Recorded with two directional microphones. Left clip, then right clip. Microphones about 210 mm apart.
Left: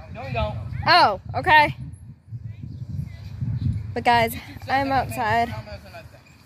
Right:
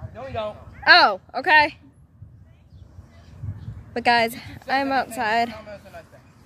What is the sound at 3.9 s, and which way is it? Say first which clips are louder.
A woman's voice: even; 5° right (ahead or behind).